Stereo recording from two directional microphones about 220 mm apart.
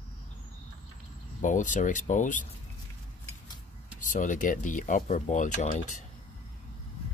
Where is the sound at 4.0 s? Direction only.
35° left (ahead or behind).